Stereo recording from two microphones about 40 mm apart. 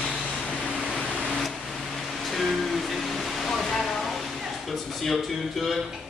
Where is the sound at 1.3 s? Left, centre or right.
Centre.